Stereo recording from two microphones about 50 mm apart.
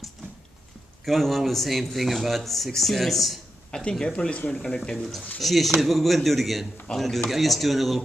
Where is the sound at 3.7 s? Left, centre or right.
Centre.